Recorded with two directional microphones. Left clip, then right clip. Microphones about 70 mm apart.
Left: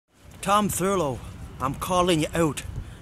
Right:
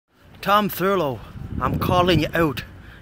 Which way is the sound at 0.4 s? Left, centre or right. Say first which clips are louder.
Right 4 dB; centre.